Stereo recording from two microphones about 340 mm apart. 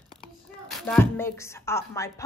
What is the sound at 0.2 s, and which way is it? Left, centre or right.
A woman's voice, centre.